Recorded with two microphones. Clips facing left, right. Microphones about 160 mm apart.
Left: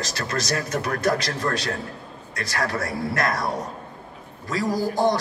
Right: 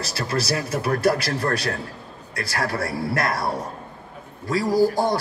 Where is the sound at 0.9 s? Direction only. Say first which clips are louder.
Right 4 dB; 30° right (ahead or behind).